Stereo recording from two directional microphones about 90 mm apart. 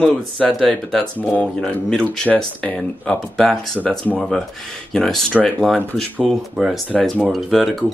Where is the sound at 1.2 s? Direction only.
15° left (ahead or behind).